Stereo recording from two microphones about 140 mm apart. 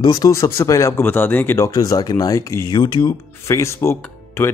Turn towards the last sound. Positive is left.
turn(degrees=20)  # may be behind; listen again after turning